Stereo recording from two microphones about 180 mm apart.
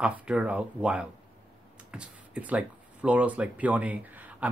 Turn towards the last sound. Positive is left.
turn(degrees=-10)  # may be behind; listen again after turning